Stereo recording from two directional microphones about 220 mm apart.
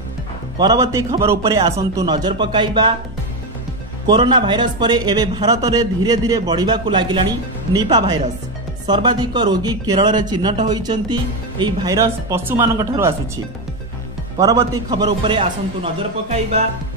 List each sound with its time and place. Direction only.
0.6 s a man's voice: 15° right (ahead or behind)
4.1 s a man's voice: 20° right (ahead or behind)
14.4 s a man's voice: 15° right (ahead or behind)